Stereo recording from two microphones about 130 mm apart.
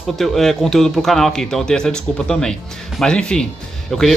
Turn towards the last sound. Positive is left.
turn(degrees=0)  # may be behind; listen again after turning